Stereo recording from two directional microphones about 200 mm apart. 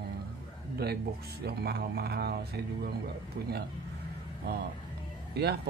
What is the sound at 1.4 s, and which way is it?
Speech, 55° right (ahead or behind).